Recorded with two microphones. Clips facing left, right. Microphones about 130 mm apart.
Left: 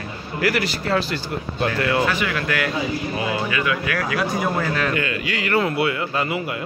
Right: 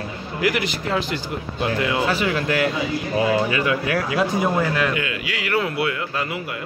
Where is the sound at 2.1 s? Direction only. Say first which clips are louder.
Right 2 dB; 30° right (ahead or behind).